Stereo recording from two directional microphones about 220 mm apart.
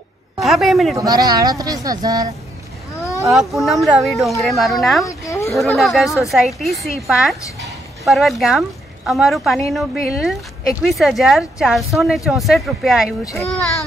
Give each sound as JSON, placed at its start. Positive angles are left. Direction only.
{"t": 0.4, "sound": "a woman's voice", "side_deg": 0}
{"t": 0.9, "sound": "speech", "side_deg": -15}
{"t": 3.3, "sound": "a woman's voice", "side_deg": 0}
{"t": 5.0, "sound": "a sound", "side_deg": 15}
{"t": 5.5, "sound": "a woman's voice", "side_deg": 0}
{"t": 13.2, "sound": "a child's voice", "side_deg": 15}